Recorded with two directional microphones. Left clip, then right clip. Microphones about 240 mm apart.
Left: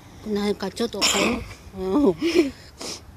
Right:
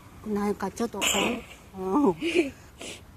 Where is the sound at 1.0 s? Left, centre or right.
Centre.